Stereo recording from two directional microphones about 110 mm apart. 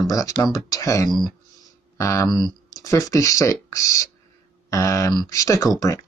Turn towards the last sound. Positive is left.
turn(degrees=35)  # may be behind; listen again after turning